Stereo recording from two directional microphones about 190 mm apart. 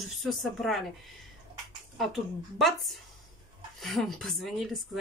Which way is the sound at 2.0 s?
Centre (ahead or behind).